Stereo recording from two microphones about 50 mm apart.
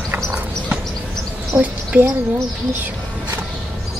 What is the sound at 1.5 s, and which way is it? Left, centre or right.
Speech, right.